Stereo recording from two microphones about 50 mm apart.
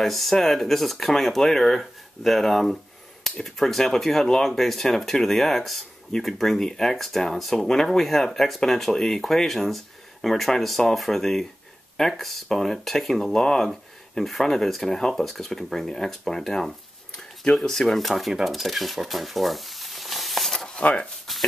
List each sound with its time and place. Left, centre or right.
0.0 s speech: centre
20.5 s a sound: centre
20.8 s speech: left